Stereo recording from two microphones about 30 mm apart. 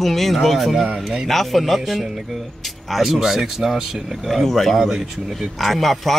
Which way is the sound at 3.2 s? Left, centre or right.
Centre.